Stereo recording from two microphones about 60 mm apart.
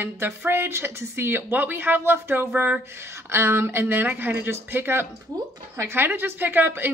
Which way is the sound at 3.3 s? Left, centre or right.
Right.